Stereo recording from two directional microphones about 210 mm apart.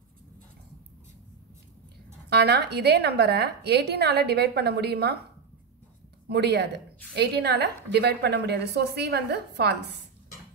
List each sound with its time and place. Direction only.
2.2 s a woman's voice: 50° right (ahead or behind)
6.2 s a woman's voice: 50° right (ahead or behind)